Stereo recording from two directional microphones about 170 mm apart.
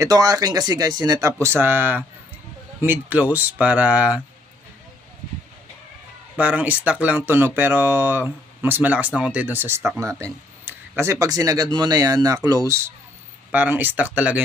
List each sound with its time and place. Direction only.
0.0 s speech: 20° right (ahead or behind)
6.3 s speech: 10° right (ahead or behind)